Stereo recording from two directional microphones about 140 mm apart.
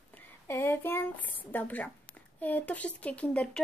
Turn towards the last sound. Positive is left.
turn(degrees=10)  # may be behind; listen again after turning